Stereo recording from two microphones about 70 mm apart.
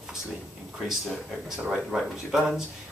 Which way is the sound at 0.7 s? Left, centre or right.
Centre.